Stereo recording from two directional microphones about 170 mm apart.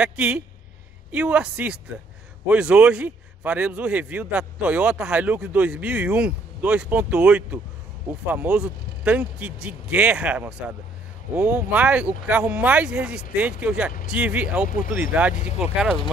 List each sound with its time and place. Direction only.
0.0 s a man's voice: 5° right (ahead or behind)